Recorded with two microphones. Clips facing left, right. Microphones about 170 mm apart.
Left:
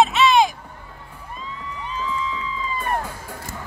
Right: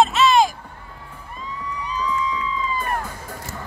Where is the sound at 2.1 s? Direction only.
25° left (ahead or behind).